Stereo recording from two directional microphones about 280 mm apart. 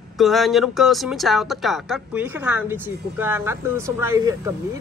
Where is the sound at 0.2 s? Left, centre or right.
Centre.